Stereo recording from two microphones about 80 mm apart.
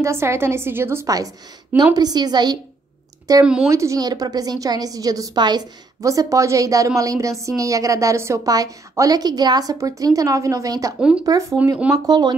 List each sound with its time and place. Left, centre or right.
0.0 s a woman's voice: right
1.0 s a woman's voice: right
2.0 s a woman's voice: right
3.3 s a woman's voice: right
4.0 s a woman's voice: right
5.4 s a woman's voice: right
5.9 s a woman's voice: right
11.0 s speech: centre
12.1 s a woman's voice: right